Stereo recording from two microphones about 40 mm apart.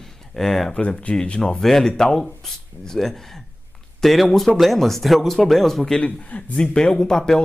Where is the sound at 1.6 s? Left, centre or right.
Centre.